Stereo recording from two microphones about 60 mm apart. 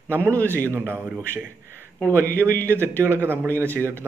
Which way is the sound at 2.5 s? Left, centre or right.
Left.